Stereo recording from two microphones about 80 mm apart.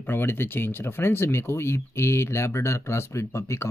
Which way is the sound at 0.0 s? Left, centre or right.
Left.